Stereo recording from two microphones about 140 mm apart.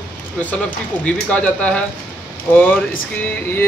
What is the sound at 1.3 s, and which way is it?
Speech, 10° left (ahead or behind).